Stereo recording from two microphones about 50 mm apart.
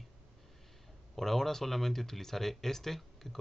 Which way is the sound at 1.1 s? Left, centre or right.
Centre.